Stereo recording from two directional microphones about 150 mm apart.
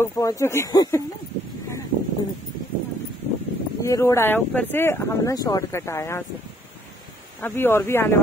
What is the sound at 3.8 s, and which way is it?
Speech, 20° left (ahead or behind).